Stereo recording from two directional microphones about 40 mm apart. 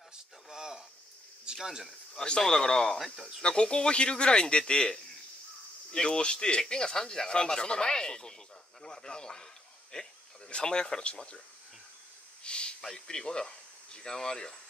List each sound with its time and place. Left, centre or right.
0.5 s a sound: centre
1.4 s speech: centre
2.1 s speech: left
3.0 s speech: centre
3.4 s speech: left
12.4 s a sound: left
12.9 s speech: centre